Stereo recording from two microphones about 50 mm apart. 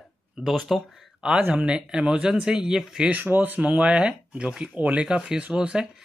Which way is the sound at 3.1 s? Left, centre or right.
Right.